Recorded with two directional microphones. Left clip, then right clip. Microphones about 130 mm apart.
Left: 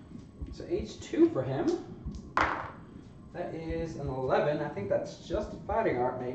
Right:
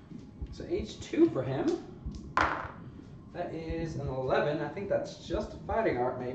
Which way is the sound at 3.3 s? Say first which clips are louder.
Left 1 dB; 25° right (ahead or behind).